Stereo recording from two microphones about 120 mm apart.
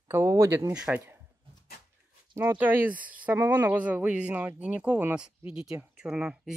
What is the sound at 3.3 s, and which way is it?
Speech, 30° right (ahead or behind).